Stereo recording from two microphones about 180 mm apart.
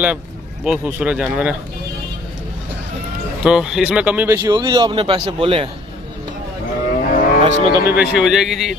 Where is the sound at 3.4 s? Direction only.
5° right (ahead or behind); by 5.7 s 30° right (ahead or behind).